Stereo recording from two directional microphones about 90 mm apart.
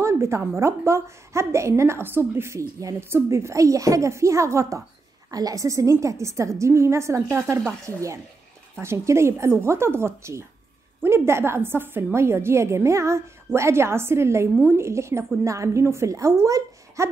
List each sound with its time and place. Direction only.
0.0 s a woman's voice: 30° right (ahead or behind)